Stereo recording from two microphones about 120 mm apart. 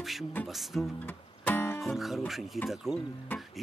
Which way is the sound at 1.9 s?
Centre (ahead or behind).